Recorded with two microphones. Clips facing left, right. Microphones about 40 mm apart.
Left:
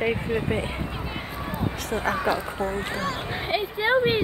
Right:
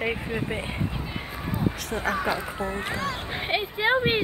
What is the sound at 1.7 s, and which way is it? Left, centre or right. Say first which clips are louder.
Speech: left 1 dB; centre.